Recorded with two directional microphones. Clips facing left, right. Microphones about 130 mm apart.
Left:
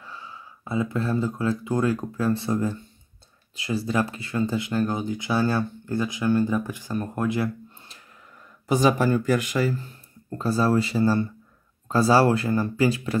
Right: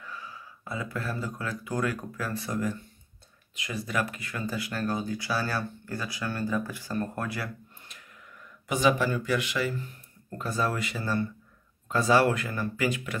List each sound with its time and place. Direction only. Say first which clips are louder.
0.0 s speech: left 1 dB; 25° left (ahead or behind)